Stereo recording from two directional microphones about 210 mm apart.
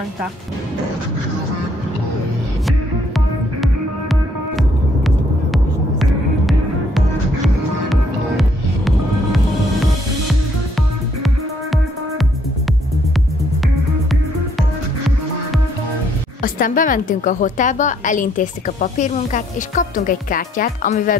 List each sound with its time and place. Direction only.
3.6 s music: centre (ahead or behind)
11.2 s music: centre (ahead or behind)
16.4 s a woman's voice: 40° left (ahead or behind)